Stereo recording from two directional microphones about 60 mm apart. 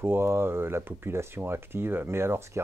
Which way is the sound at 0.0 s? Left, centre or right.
Right.